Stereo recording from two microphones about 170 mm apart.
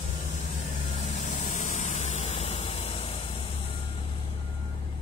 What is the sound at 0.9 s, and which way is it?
Vehicle, 40° left (ahead or behind).